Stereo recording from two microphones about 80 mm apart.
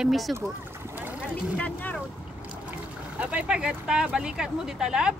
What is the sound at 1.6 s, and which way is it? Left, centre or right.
Speech, left.